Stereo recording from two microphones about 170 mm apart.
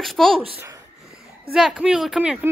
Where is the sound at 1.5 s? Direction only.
5° right (ahead or behind).